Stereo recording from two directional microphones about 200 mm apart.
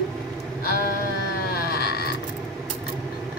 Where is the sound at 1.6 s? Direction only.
50° left (ahead or behind).